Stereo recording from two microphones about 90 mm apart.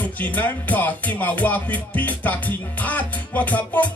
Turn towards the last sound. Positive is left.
turn(degrees=20)  # may be behind; listen again after turning